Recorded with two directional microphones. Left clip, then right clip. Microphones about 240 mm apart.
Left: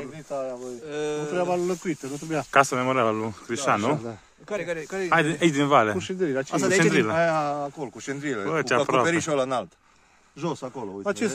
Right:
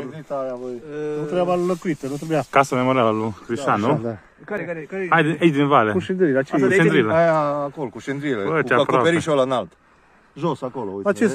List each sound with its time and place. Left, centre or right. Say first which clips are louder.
0.0 s speech: right 4 dB; centre
0.8 s speech: even; centre
1.3 s speech: right 7 dB; right
2.5 s speech: right 2 dB; centre
4.6 s speech: right 1 dB; left
5.1 s speech: right 4 dB; centre
5.9 s speech: right 7 dB; right
6.5 s speech: right 5 dB; left
6.8 s speech: right 3 dB; centre
7.2 s speech: right 6 dB; right
8.5 s speech: right 5 dB; centre
9.0 s speech: right 6 dB; right